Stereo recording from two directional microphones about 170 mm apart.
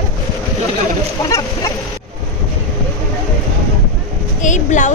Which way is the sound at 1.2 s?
20° left (ahead or behind).